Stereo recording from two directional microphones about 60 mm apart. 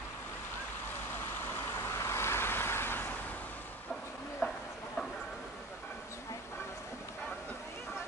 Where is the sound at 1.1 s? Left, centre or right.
Left.